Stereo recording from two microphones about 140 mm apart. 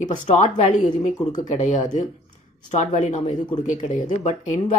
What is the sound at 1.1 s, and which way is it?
Speech, 30° left (ahead or behind).